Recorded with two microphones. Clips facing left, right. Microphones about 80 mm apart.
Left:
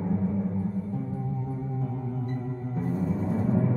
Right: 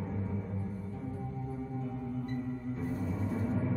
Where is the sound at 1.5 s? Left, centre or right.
Left.